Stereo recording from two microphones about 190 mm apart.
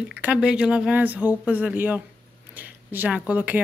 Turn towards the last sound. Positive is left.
turn(degrees=-10)  # may be behind; listen again after turning